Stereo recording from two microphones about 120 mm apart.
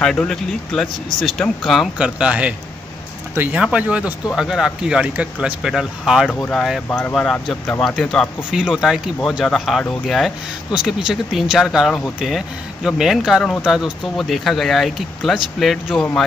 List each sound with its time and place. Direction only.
0.0 s speech: 5° left (ahead or behind)
6.9 s speech: 15° left (ahead or behind)
7.2 s speech: 5° left (ahead or behind)
8.5 s speech: 5° right (ahead or behind)